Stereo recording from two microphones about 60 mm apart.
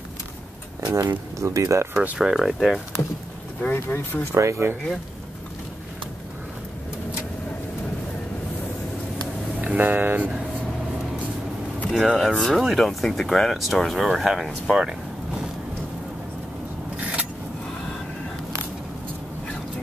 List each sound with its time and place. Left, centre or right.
0.8 s speech: right
2.1 s speech: centre
3.6 s speech: left
4.3 s speech: right
9.6 s speech: right
12.1 s speech: centre
17.0 s a sound: right